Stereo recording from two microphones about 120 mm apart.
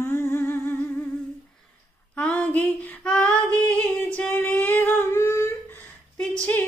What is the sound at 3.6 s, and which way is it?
Female singing, 15° left (ahead or behind).